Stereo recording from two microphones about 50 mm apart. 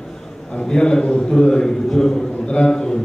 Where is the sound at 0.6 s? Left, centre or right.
Centre.